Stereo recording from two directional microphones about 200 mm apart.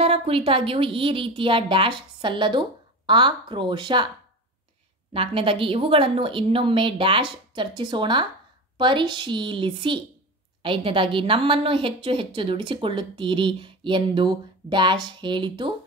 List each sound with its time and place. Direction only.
0.0 s a woman's voice: 30° right (ahead or behind)
5.1 s a woman's voice: 25° right (ahead or behind)